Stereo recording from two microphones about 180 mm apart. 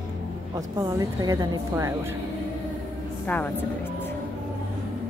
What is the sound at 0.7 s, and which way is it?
A woman's voice, 20° right (ahead or behind).